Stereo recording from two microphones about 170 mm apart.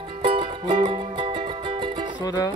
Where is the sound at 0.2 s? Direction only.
30° right (ahead or behind).